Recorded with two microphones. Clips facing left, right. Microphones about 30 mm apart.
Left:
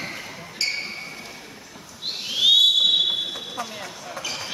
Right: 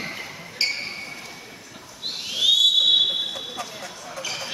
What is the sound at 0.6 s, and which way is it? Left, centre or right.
Basketball bounce, centre.